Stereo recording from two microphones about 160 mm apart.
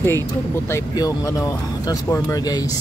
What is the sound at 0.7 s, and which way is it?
Speech, 20° left (ahead or behind).